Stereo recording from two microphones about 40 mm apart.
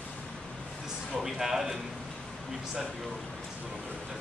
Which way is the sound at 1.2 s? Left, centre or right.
Centre.